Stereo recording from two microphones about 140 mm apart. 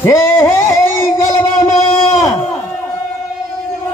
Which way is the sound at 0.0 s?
20° left (ahead or behind).